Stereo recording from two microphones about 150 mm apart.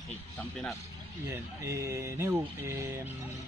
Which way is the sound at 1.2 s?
20° right (ahead or behind).